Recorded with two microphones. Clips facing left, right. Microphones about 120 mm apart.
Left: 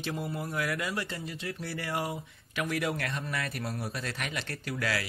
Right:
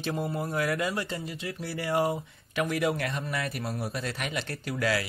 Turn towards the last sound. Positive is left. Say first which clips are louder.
# right 4 dB
turn(degrees=-20)  # may be behind; listen again after turning